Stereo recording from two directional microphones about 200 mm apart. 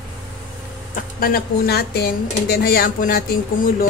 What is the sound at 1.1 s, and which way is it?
Speech, 45° left (ahead or behind).